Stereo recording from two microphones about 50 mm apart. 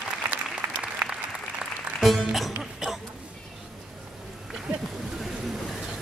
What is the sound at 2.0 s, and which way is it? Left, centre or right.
Speech, centre.